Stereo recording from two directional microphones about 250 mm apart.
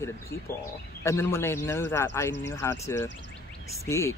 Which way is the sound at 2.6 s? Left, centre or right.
Centre.